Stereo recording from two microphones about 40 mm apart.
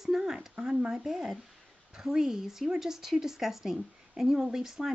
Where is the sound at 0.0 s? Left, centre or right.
Centre.